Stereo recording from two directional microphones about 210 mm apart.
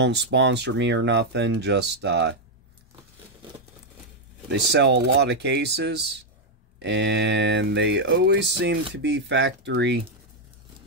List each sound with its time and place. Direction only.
0.0 s speech: 55° right (ahead or behind)
4.5 s speech: 55° right (ahead or behind)